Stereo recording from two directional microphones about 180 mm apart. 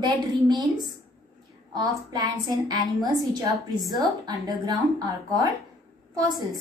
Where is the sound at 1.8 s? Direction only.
20° right (ahead or behind).